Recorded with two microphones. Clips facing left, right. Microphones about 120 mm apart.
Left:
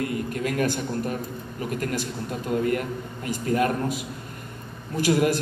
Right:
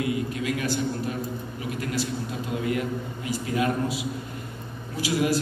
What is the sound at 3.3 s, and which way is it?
Speech, 50° left (ahead or behind).